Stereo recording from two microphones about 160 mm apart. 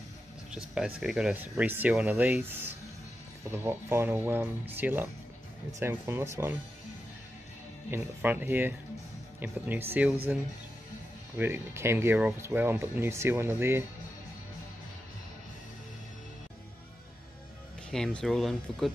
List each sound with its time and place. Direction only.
0.5 s speech: 5° right (ahead or behind)
7.9 s speech: 10° right (ahead or behind)
17.9 s speech: 5° left (ahead or behind)